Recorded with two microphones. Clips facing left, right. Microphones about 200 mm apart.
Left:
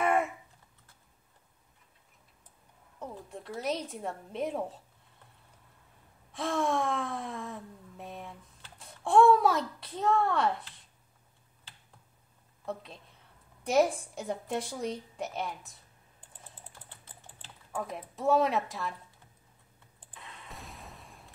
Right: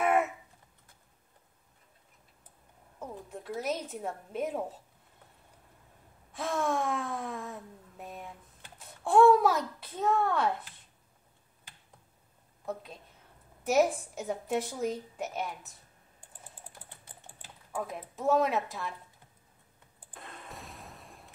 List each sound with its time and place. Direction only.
3.0 s a woman's voice: 5° right (ahead or behind)
6.3 s a woman's voice: centre (ahead or behind)
8.7 s a child's voice: centre (ahead or behind)
13.7 s a woman's voice: 5° right (ahead or behind)
16.2 s typing: 10° right (ahead or behind)
17.4 s speech: 5° right (ahead or behind)
20.2 s a sound: 50° right (ahead or behind)
20.4 s a sound: centre (ahead or behind)